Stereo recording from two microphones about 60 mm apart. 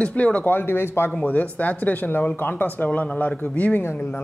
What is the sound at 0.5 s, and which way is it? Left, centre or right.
Speech, left.